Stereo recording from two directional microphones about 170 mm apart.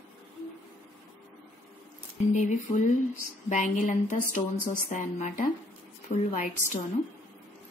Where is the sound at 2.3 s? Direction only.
45° left (ahead or behind).